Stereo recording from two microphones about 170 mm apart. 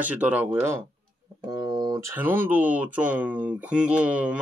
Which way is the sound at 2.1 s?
10° right (ahead or behind).